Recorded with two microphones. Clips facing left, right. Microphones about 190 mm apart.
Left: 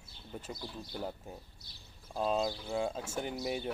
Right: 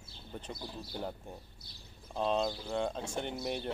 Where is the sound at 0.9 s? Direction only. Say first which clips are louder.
Even; centre (ahead or behind).